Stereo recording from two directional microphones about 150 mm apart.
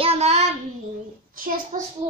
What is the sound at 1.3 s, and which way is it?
Speech, 70° right (ahead or behind).